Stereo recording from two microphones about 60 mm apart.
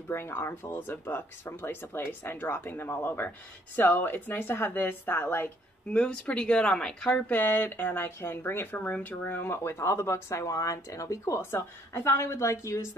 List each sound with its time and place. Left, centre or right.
0.1 s speech: left
5.9 s speech: left
7.3 s speech: left
10.4 s speech: left
11.9 s a woman's voice: left